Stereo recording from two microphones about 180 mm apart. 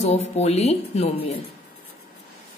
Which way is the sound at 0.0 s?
35° left (ahead or behind).